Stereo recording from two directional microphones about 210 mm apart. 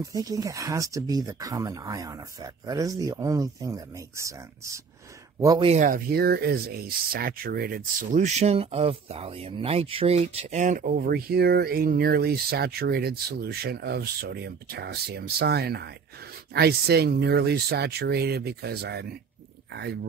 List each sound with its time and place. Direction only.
0.0 s speech: 15° right (ahead or behind)
5.7 s speech: 40° right (ahead or behind)